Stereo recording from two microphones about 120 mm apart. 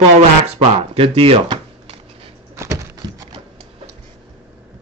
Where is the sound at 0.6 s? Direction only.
50° right (ahead or behind).